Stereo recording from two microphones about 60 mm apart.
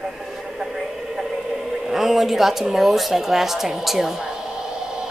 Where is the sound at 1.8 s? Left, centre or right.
Centre.